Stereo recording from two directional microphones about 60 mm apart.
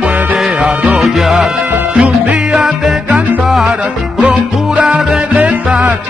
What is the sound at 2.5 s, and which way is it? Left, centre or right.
Music, centre.